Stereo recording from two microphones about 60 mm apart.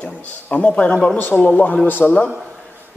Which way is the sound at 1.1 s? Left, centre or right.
Left.